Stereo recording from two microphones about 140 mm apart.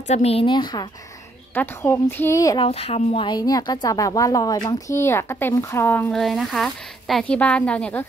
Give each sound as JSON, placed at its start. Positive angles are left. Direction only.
{"t": 0.0, "sound": "a woman's voice", "side_deg": 50}
{"t": 1.5, "sound": "speech", "side_deg": 15}
{"t": 2.6, "sound": "a woman's voice", "side_deg": 45}
{"t": 6.1, "sound": "speech", "side_deg": 0}